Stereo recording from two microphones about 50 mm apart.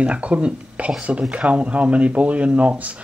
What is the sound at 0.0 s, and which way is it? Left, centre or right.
Speech, right.